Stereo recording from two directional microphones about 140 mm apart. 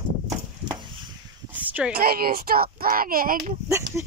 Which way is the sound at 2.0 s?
90° right.